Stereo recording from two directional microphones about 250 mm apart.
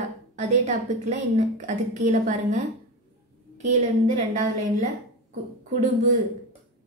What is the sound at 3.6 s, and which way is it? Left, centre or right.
Speech, right.